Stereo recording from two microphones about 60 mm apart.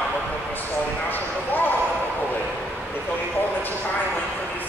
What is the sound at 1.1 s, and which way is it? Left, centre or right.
Basketball bounce, left.